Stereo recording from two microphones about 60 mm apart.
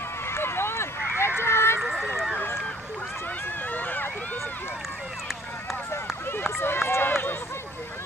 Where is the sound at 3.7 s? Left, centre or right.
Left.